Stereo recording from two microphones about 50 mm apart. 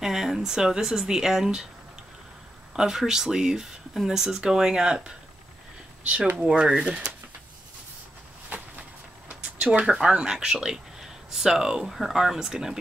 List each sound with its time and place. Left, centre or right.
0.0 s speech: centre
2.7 s speech: centre
6.4 s speech: centre
8.5 s a sound: right
9.8 s speech: centre